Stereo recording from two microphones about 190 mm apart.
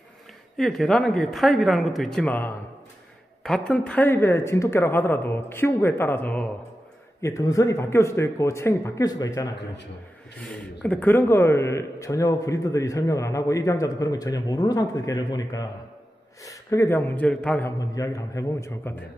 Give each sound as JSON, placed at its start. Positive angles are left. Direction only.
{"t": 0.6, "sound": "a woman's voice", "side_deg": 0}
{"t": 10.4, "sound": "a man's voice", "side_deg": 5}